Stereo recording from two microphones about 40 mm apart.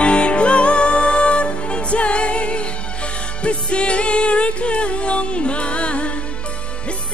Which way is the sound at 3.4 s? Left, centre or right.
Left.